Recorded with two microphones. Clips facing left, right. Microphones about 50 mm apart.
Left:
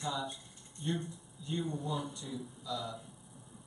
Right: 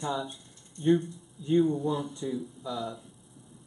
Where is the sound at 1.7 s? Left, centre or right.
Centre.